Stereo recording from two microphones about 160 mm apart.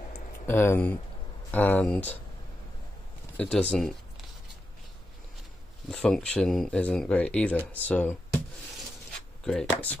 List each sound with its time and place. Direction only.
0.5 s speech: 15° left (ahead or behind)
3.3 s speech: 5° left (ahead or behind)
5.9 s speech: 5° left (ahead or behind)
9.4 s speech: 5° left (ahead or behind)